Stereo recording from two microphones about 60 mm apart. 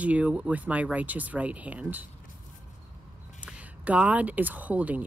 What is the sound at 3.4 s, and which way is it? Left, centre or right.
Speech, right.